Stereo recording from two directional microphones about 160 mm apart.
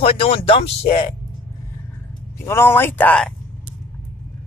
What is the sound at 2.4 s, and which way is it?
Speech, 15° left (ahead or behind).